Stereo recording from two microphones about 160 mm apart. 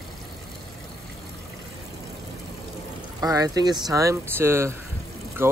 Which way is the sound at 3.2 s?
20° right (ahead or behind).